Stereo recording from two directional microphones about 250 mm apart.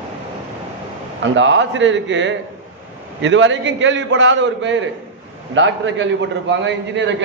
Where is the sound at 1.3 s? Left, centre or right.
Right.